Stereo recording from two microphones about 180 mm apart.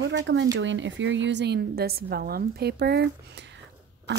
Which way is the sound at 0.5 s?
90° right.